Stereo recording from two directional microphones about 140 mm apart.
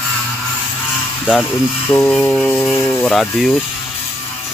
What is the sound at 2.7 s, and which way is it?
Speech, 10° left (ahead or behind).